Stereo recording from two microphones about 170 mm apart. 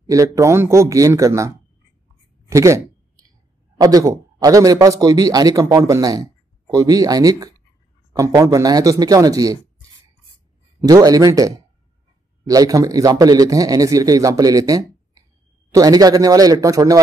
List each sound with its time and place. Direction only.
0.0 s a man's voice: 20° right (ahead or behind)
2.5 s a sound: 20° right (ahead or behind)
3.7 s a man's voice: 20° right (ahead or behind)
10.8 s a man's voice: 20° right (ahead or behind)